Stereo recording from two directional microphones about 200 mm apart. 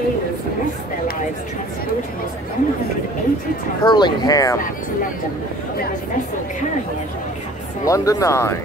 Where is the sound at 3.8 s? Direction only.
20° left (ahead or behind).